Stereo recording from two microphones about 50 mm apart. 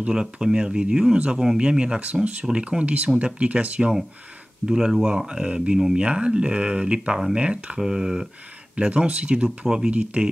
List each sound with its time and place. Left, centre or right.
0.0 s speech: centre
2.8 s speech: right
7.8 s speech: centre
8.7 s speech: right